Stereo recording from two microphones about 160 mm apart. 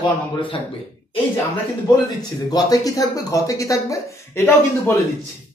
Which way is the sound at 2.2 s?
25° left (ahead or behind).